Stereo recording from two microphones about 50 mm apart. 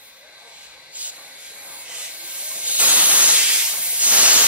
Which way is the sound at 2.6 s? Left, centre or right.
Right.